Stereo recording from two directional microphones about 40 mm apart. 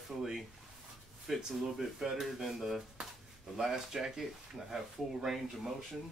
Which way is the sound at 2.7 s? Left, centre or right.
Centre.